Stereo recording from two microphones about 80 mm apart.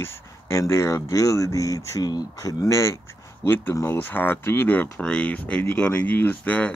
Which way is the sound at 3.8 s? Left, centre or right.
Left.